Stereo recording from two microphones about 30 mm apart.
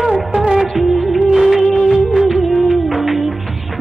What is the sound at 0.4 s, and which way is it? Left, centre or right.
Music, right.